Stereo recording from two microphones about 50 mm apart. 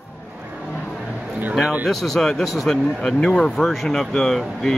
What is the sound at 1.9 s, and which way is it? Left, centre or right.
Speech, centre.